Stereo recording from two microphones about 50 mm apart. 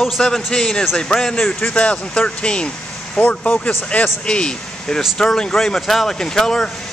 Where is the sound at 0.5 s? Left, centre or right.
Centre.